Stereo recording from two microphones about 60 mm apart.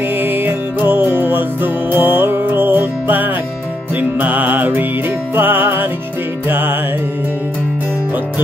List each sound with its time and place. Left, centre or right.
0.1 s music: right